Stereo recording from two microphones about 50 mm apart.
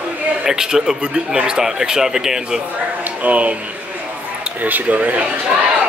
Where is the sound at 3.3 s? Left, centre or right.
Right.